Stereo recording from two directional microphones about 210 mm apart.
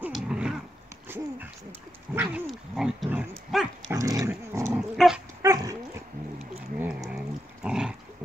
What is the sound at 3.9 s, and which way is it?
Dog, 15° right (ahead or behind).